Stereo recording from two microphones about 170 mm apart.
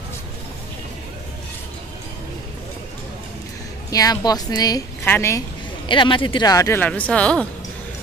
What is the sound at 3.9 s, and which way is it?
A woman's voice, 20° left (ahead or behind).